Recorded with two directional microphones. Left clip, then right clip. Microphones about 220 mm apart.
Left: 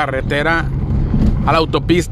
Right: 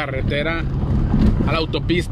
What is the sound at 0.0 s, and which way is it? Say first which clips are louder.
Speech: left 6 dB; 25° left (ahead or behind).